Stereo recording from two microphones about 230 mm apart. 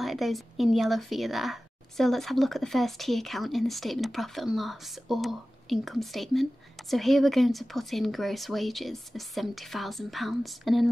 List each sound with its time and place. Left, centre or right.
0.0 s speech: centre